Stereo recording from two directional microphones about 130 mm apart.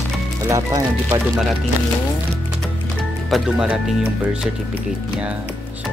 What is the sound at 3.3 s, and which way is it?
Speech, 5° right (ahead or behind).